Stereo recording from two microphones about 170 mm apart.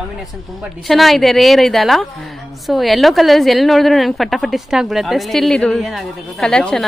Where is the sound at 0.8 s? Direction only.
Centre (ahead or behind).